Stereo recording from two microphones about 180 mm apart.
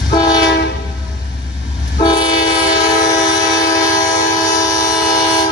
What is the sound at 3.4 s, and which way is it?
Train, 20° left (ahead or behind).